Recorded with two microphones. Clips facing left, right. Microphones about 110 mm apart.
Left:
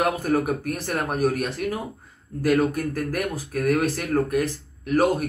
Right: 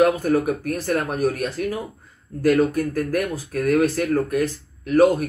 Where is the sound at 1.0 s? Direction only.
15° left (ahead or behind).